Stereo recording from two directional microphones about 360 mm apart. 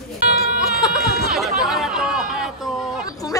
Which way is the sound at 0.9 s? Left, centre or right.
Centre.